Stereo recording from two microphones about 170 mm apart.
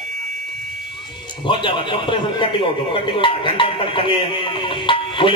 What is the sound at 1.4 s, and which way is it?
A man's voice, 30° left (ahead or behind).